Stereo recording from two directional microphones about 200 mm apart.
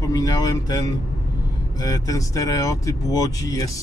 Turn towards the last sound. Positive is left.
turn(degrees=15)  # may be behind; listen again after turning